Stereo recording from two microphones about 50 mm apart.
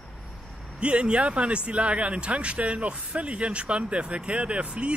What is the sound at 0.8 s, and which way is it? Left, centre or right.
Speech, right.